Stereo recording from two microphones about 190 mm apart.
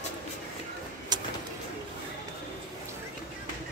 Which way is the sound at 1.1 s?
20° right (ahead or behind).